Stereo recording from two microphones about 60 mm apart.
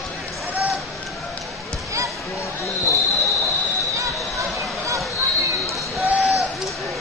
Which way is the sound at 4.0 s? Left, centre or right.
Right.